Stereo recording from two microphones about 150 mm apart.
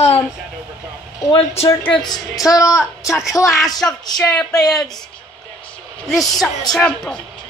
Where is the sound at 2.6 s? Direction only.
5° right (ahead or behind).